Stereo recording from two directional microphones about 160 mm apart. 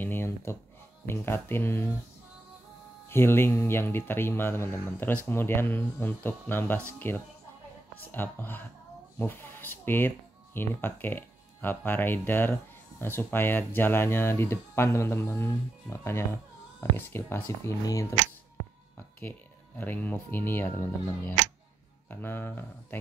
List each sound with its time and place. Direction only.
0.0 s a sound: 15° left (ahead or behind)
1.0 s speech: 15° left (ahead or behind)
3.1 s speech: 15° left (ahead or behind)
19.8 s speech: 10° left (ahead or behind)